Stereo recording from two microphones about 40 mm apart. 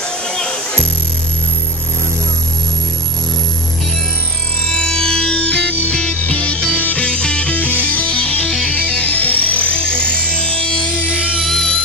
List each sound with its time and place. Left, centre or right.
0.3 s music: centre
4.6 s music: centre; by 7.1 s left
7.1 s music: left
7.5 s music: left
11.4 s music: centre